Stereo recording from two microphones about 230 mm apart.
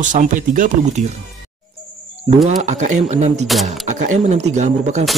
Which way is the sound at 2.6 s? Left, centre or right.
Right.